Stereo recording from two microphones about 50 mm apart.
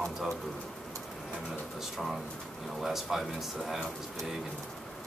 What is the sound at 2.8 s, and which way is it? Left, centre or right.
Speech, centre.